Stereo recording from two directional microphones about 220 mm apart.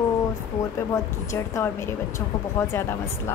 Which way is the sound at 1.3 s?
15° left (ahead or behind).